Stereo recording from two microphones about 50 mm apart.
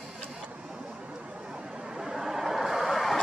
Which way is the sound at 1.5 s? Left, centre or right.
Centre.